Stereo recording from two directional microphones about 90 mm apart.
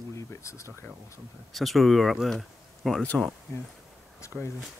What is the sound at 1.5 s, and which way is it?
Speech, centre (ahead or behind).